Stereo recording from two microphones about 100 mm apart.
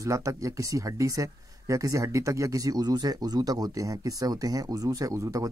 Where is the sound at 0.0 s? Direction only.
30° right (ahead or behind).